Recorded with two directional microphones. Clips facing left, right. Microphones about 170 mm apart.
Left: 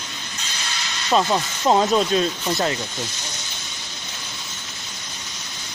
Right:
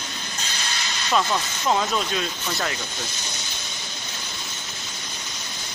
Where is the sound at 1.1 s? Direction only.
20° left (ahead or behind).